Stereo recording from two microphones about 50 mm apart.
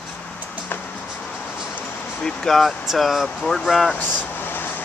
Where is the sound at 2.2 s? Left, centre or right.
Centre.